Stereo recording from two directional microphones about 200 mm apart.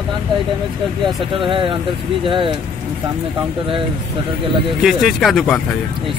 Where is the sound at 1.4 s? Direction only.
25° right (ahead or behind).